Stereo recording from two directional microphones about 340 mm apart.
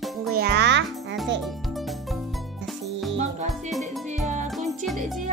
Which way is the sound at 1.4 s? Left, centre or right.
Centre.